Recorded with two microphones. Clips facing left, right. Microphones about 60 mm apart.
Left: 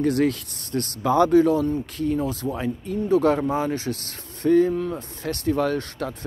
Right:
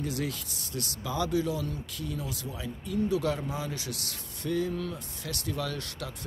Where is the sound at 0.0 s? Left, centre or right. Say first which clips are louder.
Left 12 dB; left.